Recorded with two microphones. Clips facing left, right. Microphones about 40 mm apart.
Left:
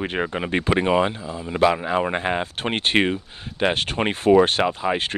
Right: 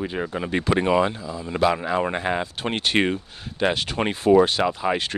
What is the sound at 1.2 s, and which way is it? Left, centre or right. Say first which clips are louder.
Speech: left 1 dB; left.